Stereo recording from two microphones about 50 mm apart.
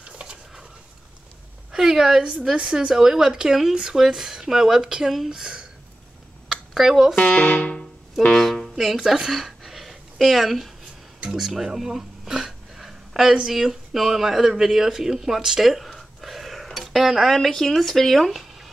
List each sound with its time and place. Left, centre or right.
0.0 s a sound: right
1.7 s a woman's voice: centre
6.5 s a sound: centre
7.2 s speech: left
8.4 s music: centre
8.7 s speech: centre